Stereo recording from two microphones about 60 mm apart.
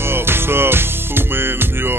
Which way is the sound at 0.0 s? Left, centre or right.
Right.